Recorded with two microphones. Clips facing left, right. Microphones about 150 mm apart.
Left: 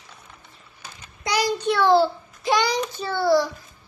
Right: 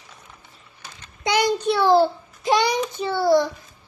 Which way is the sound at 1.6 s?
10° right (ahead or behind).